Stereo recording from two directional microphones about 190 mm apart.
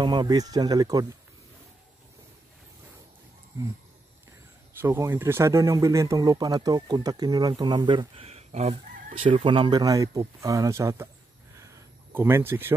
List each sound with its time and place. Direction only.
0.0 s speech: 20° right (ahead or behind)
4.8 s speech: 10° right (ahead or behind)
11.6 s a sound: 15° right (ahead or behind)